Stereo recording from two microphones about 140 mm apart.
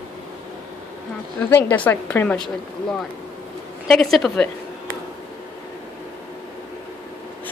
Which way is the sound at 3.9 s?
Centre (ahead or behind).